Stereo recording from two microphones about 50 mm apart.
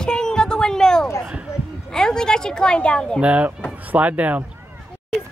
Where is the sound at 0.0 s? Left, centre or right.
Centre.